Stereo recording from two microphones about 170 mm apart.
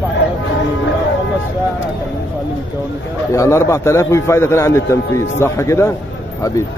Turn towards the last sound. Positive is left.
turn(degrees=15)  # may be behind; listen again after turning